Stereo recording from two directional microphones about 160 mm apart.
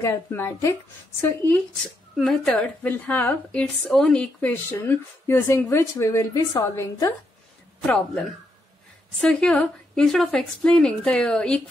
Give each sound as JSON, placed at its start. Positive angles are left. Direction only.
{"t": 0.0, "sound": "a woman's voice", "side_deg": 15}
{"t": 2.1, "sound": "a woman's voice", "side_deg": 0}
{"t": 7.8, "sound": "a woman's voice", "side_deg": 5}